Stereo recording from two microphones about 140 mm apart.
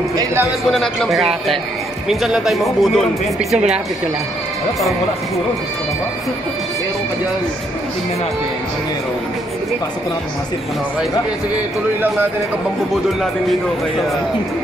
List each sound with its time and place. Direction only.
0.1 s a sound: 25° right (ahead or behind)
0.7 s speech: centre (ahead or behind)
12.9 s speech: centre (ahead or behind)